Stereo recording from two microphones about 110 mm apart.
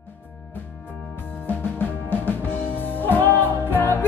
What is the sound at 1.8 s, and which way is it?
Music, 20° left (ahead or behind).